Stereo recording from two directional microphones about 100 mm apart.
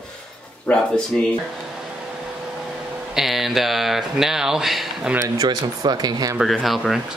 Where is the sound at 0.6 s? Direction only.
10° left (ahead or behind).